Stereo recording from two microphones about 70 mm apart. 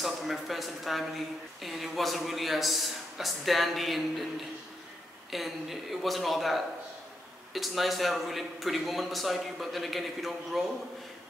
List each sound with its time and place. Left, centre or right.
0.0 s a man's voice: centre
5.3 s a man's voice: centre